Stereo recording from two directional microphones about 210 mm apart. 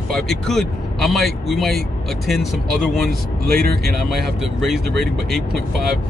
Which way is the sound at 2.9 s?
Centre (ahead or behind).